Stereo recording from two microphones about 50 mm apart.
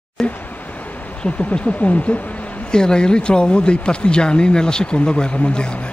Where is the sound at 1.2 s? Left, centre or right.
Left.